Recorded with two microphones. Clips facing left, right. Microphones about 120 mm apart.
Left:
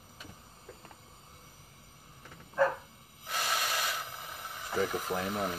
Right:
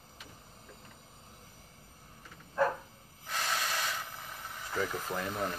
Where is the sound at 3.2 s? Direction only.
10° left (ahead or behind).